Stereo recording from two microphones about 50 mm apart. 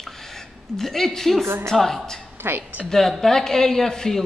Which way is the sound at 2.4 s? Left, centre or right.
Right.